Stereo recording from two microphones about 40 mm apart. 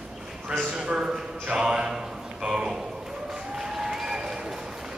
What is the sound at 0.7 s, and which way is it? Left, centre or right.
Speech, centre.